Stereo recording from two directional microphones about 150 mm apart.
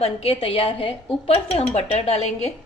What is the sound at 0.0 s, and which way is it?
A woman's voice, 40° left (ahead or behind).